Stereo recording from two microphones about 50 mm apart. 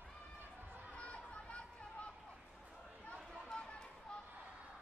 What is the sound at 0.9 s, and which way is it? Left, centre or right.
Chatter, left.